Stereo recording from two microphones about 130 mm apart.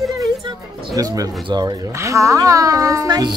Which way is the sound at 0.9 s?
25° right (ahead or behind).